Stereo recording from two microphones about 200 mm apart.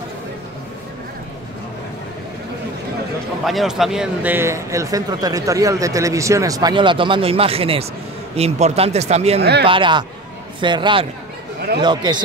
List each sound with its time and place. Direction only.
3.4 s a man's voice: centre (ahead or behind); by 9.4 s 30° right (ahead or behind)
9.4 s speech: 55° right (ahead or behind)
9.7 s a man's voice: 25° right (ahead or behind)